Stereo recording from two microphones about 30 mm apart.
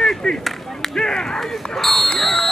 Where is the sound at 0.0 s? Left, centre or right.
Left.